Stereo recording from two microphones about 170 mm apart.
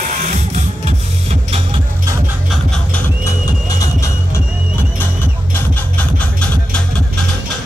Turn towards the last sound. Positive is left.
turn(degrees=10)  # may be behind; listen again after turning